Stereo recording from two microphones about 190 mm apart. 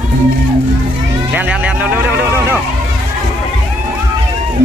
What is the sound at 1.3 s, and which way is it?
Vehicle, 5° right (ahead or behind).